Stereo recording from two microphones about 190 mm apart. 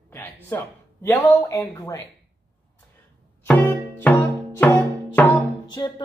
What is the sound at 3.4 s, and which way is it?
Music, 10° left (ahead or behind).